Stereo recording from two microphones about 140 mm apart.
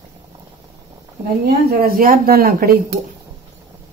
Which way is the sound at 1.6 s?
90° right.